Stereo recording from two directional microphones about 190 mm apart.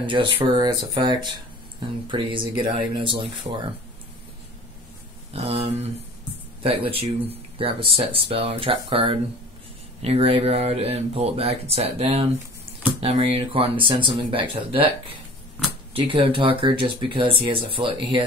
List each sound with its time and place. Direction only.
0.0 s speech: 25° right (ahead or behind)
5.3 s speech: 30° right (ahead or behind)